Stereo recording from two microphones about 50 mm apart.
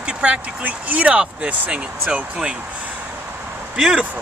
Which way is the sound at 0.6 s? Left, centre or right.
Right.